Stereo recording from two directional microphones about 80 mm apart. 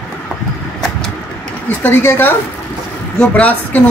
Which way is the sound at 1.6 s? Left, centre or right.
Left.